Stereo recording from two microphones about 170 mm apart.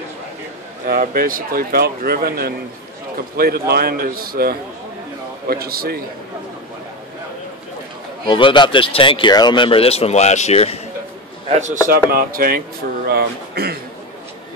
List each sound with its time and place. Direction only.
0.8 s speech: 55° right (ahead or behind)
8.3 s speech: 30° left (ahead or behind)
11.4 s a man's voice: 45° right (ahead or behind)
12.1 s speech: 60° right (ahead or behind)